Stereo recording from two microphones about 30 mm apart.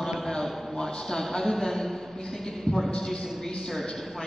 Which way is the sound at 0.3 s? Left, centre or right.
Centre.